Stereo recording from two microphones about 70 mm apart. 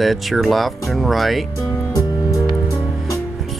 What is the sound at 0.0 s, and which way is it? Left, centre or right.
Speech, centre.